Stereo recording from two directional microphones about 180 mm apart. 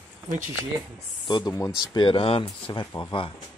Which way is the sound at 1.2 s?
25° left (ahead or behind).